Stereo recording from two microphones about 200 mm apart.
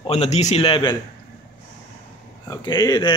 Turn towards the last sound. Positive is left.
turn(degrees=20)  # may be behind; listen again after turning